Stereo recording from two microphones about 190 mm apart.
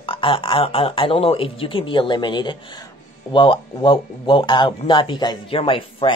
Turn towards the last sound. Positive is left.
turn(degrees=30)  # may be behind; listen again after turning